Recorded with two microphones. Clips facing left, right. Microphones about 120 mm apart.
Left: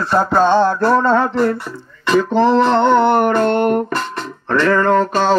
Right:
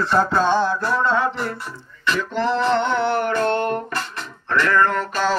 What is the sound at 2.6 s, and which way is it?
Music, 65° left (ahead or behind).